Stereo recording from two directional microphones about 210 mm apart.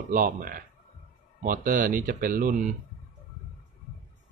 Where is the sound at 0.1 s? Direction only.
40° right (ahead or behind).